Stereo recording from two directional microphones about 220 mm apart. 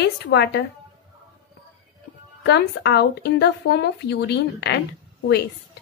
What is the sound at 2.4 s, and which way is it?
Speech, 50° left (ahead or behind).